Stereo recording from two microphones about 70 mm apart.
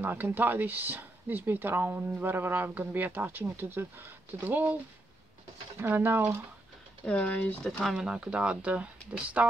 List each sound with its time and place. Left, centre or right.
0.0 s speech: right
5.8 s speech: right
7.1 s speech: centre
7.8 s speech: centre